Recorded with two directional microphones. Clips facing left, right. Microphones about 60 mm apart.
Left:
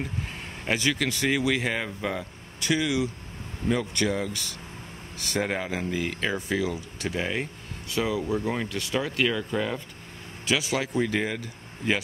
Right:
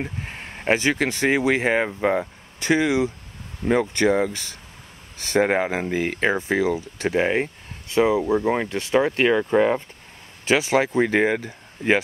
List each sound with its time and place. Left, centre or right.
0.0 s speech: right